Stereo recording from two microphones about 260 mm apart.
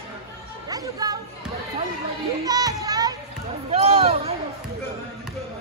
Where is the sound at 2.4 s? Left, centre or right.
Centre.